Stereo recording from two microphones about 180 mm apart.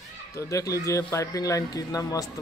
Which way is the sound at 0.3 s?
15° left (ahead or behind).